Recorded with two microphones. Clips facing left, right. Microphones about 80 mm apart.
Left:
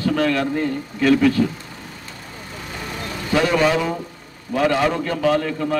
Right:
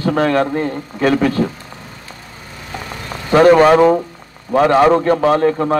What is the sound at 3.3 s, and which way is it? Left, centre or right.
A man's voice, right.